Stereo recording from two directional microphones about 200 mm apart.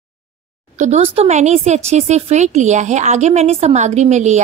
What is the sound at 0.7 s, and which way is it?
A woman's voice, 35° right (ahead or behind).